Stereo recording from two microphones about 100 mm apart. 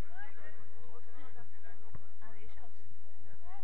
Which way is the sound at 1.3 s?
50° left (ahead or behind).